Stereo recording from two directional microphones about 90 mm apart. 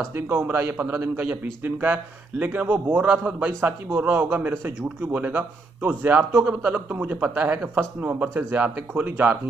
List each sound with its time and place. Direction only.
0.1 s a man's voice: 30° right (ahead or behind)